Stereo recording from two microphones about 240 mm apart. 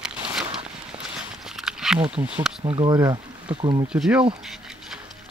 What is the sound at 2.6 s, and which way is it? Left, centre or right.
Speech, right.